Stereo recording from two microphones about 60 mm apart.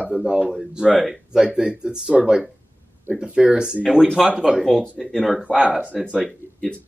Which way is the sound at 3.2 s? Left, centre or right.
Centre.